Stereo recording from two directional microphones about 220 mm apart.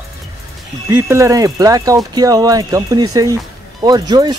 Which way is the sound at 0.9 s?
15° right (ahead or behind).